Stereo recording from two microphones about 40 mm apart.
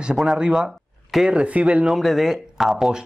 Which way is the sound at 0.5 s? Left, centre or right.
Centre.